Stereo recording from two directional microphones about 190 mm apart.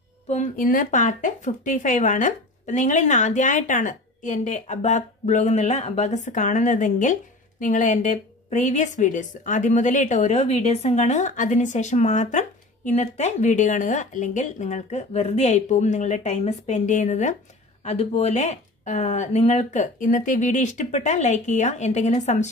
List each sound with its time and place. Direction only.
0.3 s a woman's voice: 45° left (ahead or behind)